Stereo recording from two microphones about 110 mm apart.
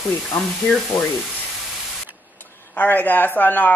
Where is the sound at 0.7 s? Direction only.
15° left (ahead or behind).